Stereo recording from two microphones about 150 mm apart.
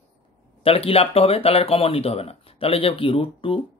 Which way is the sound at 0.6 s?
40° left (ahead or behind).